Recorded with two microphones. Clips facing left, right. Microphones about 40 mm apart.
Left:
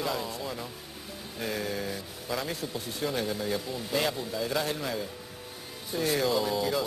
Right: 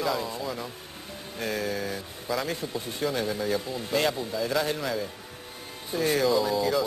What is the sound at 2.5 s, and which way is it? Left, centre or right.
Speech, centre.